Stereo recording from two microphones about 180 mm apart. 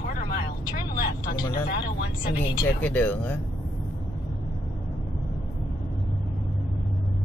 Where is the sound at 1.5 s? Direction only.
60° left (ahead or behind).